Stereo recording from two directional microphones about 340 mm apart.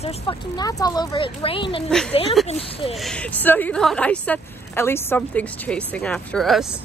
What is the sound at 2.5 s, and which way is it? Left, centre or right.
Speech, centre.